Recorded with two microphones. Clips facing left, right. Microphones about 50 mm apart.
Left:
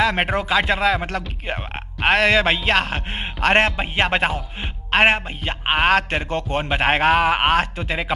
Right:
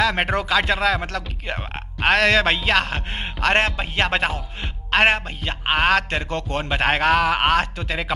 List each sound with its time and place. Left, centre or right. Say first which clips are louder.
0.0 s music: left 1 dB; centre
1.0 s a man's voice: left 2 dB; left
2.0 s music: left 1 dB; centre
4.9 s a man's voice: left 1 dB; centre